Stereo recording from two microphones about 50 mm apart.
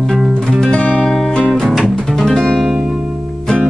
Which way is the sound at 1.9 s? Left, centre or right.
Centre.